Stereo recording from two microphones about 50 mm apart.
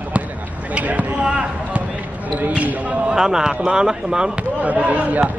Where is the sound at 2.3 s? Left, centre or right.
Right.